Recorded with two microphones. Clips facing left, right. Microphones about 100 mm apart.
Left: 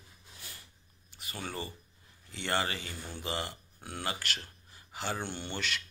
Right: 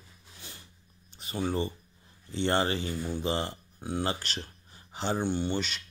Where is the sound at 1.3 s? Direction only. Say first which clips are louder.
Right 9 dB; 20° right (ahead or behind).